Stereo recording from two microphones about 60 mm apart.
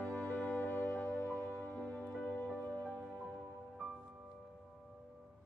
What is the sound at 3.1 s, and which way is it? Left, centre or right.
Music, centre.